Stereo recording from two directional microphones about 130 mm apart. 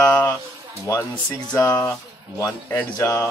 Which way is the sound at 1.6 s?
20° left (ahead or behind).